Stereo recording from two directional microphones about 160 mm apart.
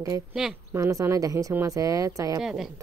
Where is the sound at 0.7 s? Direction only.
20° right (ahead or behind).